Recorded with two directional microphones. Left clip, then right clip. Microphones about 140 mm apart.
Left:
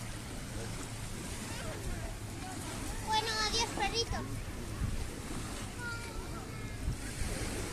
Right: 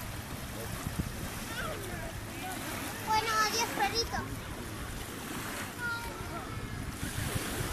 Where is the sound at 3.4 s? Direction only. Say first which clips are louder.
Right 3 dB; 55° right (ahead or behind).